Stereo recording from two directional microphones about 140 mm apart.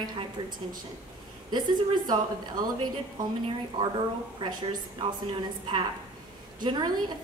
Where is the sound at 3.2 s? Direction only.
35° right (ahead or behind).